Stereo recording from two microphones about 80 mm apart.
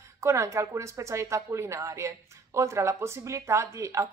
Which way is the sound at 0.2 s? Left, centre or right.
Right.